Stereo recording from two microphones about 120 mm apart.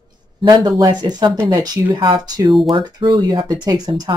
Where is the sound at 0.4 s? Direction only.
35° right (ahead or behind).